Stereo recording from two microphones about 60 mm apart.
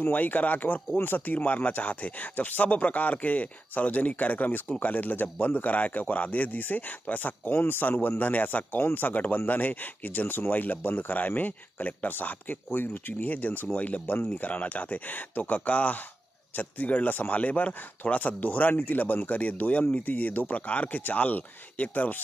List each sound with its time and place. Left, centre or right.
0.0 s speech: left